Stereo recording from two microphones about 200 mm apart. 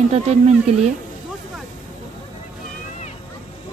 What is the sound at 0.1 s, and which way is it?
Speech, 30° right (ahead or behind).